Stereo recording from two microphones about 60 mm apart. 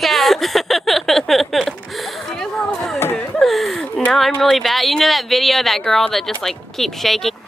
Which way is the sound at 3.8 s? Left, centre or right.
Centre.